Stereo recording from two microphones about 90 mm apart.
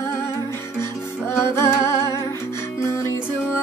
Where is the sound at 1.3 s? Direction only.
30° left (ahead or behind).